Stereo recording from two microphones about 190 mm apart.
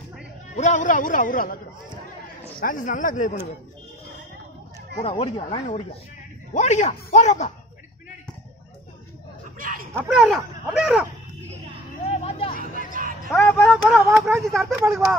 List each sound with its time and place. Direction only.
0.6 s a man's voice: 40° left (ahead or behind)
2.6 s a man's voice: 45° left (ahead or behind)
4.9 s speech: 30° left (ahead or behind)
9.6 s dog: 45° right (ahead or behind)
9.9 s speech: 5° right (ahead or behind)
12.1 s hubbub: 30° left (ahead or behind)
12.9 s basketball bounce: 45° right (ahead or behind)
13.3 s speech: 5° left (ahead or behind)